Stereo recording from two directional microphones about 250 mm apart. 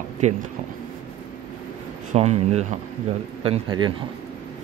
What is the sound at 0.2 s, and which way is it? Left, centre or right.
Speech, right.